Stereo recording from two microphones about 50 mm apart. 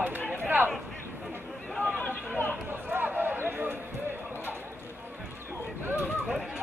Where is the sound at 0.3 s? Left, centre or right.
Right.